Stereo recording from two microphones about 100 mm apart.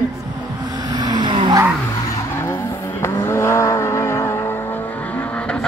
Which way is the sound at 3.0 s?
25° left (ahead or behind).